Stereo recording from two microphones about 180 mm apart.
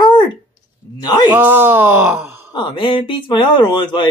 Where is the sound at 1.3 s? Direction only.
10° right (ahead or behind).